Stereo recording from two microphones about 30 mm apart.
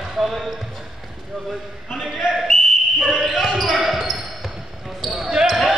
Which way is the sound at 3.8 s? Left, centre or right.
Centre.